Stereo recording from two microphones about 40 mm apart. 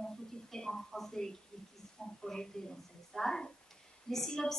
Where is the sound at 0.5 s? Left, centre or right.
Centre.